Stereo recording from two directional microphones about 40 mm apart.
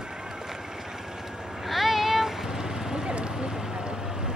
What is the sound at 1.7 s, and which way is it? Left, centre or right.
Vehicle, centre.